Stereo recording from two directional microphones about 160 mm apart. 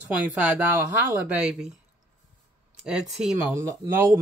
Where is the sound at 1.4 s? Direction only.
5° right (ahead or behind).